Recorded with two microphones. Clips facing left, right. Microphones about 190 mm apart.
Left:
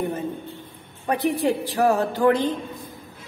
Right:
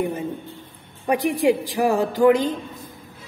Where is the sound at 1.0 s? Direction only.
15° right (ahead or behind).